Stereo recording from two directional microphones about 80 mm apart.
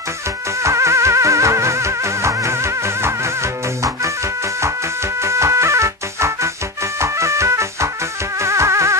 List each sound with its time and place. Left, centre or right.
0.6 s music: right